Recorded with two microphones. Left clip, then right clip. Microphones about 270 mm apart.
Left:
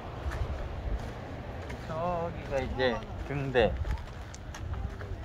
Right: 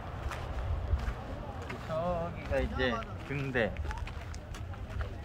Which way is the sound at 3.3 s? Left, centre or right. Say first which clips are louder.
Left 2 dB; left.